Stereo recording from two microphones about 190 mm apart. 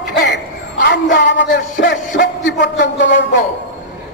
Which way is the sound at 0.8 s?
70° left (ahead or behind).